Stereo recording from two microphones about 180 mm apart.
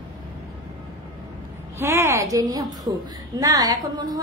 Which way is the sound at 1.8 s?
15° right (ahead or behind).